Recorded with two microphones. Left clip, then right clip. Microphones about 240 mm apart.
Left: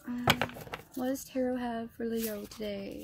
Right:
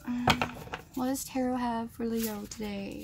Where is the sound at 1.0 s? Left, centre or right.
Centre.